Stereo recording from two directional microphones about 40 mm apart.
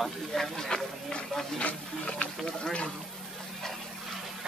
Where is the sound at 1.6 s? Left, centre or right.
Left.